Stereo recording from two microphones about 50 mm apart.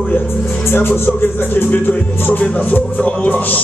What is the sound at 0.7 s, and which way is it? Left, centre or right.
Music, left.